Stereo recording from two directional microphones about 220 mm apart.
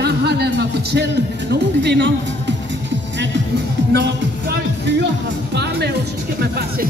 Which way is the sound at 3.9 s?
50° right (ahead or behind).